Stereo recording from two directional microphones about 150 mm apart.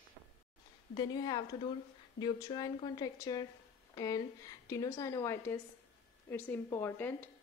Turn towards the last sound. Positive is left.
turn(degrees=15)  # may be behind; listen again after turning